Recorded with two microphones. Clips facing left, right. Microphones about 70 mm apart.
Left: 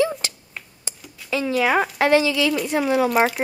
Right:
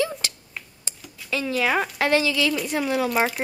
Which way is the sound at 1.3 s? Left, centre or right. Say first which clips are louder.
Left 3 dB; centre.